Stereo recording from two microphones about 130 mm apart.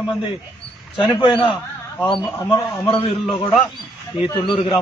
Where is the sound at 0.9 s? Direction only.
40° left (ahead or behind).